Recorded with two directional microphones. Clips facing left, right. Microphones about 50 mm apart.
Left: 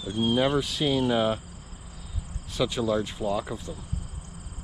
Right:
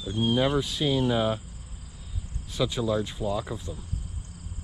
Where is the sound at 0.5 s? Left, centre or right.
Left.